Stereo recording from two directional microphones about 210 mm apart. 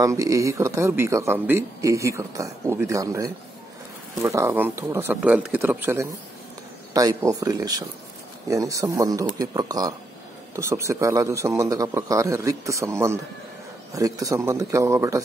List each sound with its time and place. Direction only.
0.0 s speech: 15° right (ahead or behind)